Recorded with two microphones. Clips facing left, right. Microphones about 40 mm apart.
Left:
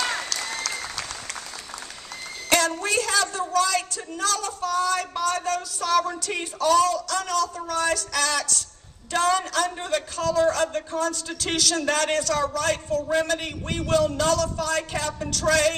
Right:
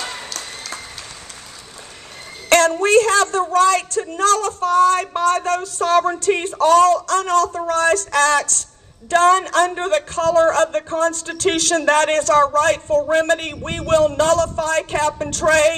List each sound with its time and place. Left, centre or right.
2.8 s a man's voice: right
13.5 s speech: right